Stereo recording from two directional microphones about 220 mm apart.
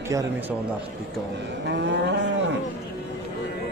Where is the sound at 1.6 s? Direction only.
55° right (ahead or behind).